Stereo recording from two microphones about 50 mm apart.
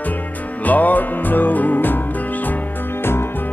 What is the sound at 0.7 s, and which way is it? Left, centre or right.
Music, left.